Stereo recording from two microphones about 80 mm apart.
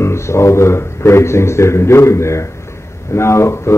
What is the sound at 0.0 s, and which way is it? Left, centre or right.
Speech, left.